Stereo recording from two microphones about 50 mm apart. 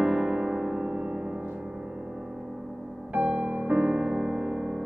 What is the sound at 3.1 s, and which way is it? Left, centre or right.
Music, right.